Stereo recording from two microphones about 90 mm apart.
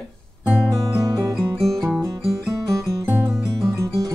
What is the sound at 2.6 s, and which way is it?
Music, 35° right (ahead or behind).